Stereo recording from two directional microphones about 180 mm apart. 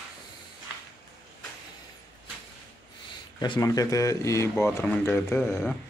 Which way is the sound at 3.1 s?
25° left (ahead or behind).